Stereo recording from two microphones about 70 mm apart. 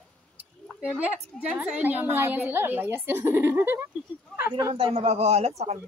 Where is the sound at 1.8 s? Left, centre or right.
Right.